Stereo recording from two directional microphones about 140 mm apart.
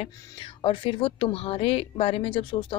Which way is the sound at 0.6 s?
40° left (ahead or behind).